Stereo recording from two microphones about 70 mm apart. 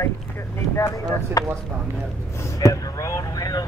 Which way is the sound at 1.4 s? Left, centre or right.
Left.